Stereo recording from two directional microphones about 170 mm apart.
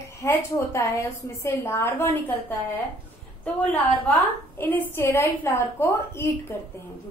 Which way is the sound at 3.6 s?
10° left (ahead or behind).